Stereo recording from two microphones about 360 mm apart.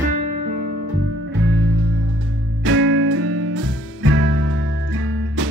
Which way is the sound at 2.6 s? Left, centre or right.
Right.